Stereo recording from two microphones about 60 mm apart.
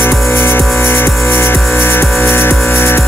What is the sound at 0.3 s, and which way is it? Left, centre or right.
Music, left.